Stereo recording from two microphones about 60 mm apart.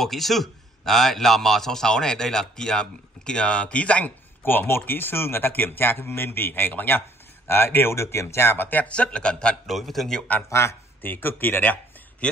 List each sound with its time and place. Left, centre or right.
0.0 s a man's voice: centre; by 4.1 s left
4.4 s speech: left
8.6 s a man's voice: left
9.7 s a man's voice: centre
10.5 s speech: left
11.0 s speech: left